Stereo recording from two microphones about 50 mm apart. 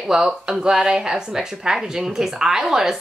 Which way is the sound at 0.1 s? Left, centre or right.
Centre.